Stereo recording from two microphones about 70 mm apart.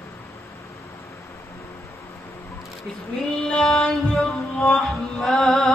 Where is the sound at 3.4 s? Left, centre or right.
Centre.